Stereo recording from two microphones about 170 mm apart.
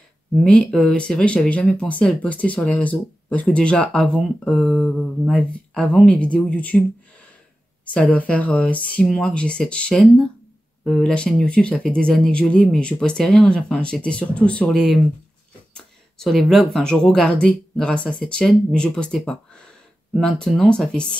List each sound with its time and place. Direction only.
0.4 s speech: 5° left (ahead or behind)
7.9 s speech: 10° left (ahead or behind)